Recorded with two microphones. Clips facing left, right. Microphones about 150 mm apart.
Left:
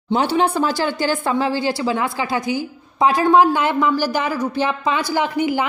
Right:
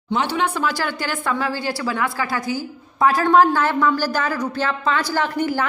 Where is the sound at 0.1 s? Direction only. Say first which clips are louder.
Left 4 dB; 35° left (ahead or behind).